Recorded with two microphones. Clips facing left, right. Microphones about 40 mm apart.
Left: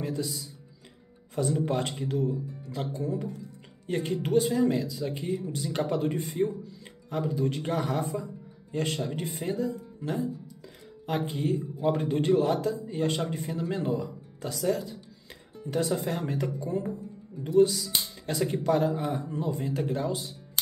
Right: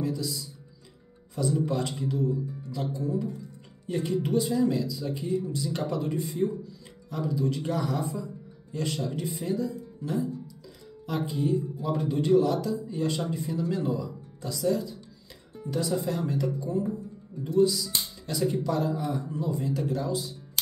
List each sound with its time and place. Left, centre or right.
0.0 s speech: left